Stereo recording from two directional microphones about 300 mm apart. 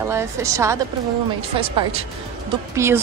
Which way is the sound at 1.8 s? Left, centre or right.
Centre.